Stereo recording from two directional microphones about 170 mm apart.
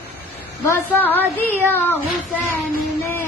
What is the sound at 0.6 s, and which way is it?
Child singing, 10° left (ahead or behind).